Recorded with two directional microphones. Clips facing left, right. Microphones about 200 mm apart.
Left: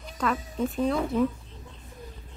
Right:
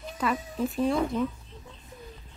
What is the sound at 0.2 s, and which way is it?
Speech, 5° right (ahead or behind).